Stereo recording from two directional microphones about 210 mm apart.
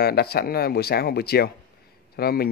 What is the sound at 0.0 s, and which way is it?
Speech, 50° left (ahead or behind).